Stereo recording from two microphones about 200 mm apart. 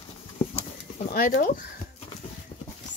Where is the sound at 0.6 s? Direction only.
40° left (ahead or behind).